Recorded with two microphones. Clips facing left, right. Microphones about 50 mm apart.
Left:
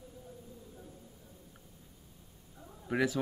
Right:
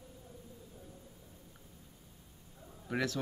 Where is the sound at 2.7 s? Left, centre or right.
Centre.